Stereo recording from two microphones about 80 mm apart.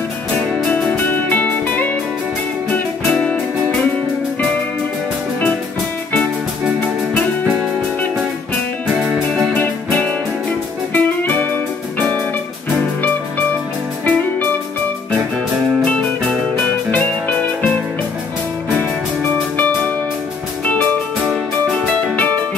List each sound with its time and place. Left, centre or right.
1.3 s music: left
9.3 s music: centre
16.9 s music: centre
22.1 s music: left